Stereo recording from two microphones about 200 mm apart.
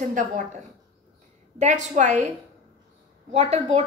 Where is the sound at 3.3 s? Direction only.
35° right (ahead or behind).